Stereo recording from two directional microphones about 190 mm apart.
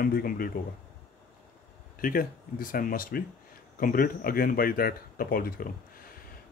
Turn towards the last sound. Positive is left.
turn(degrees=50)  # may be behind; listen again after turning